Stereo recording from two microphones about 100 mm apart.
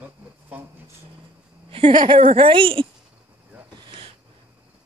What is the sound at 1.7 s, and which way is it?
Speech, 65° right (ahead or behind).